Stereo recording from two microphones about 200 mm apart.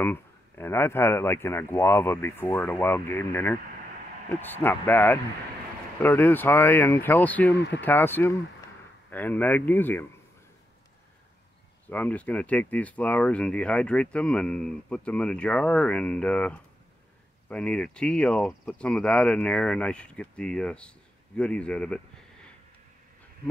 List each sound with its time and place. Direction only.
0.0 s speech: 10° left (ahead or behind)
7.5 s speech: 60° left (ahead or behind)
7.8 s speech: 10° left (ahead or behind)
11.9 s speech: 10° left (ahead or behind)